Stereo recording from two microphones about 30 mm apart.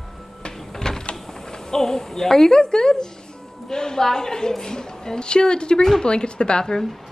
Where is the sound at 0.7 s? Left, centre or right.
Centre.